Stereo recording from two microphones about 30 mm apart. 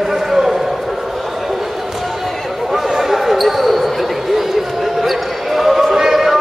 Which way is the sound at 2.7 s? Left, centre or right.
Centre.